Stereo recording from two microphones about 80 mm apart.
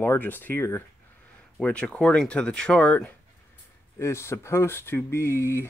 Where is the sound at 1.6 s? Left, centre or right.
Centre.